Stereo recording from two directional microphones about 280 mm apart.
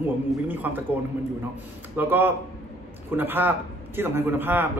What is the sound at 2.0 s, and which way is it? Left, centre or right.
A man's voice, centre.